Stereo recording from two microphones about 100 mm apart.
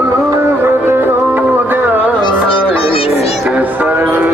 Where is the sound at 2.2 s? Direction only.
60° left (ahead or behind); by 3.3 s 80° left.